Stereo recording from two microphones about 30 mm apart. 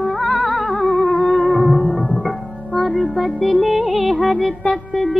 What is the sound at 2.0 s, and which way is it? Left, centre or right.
Music, left.